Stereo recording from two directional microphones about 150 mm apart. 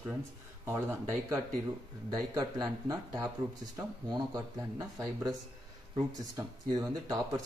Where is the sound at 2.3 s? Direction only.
25° right (ahead or behind).